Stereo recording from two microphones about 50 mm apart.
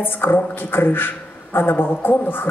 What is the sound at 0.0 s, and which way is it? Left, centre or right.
A woman's voice, left.